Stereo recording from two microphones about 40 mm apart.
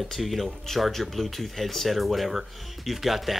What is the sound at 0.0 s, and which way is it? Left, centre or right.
Speech, centre.